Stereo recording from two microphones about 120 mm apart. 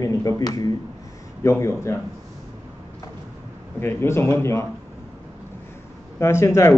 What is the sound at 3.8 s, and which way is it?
Speech, 20° left (ahead or behind).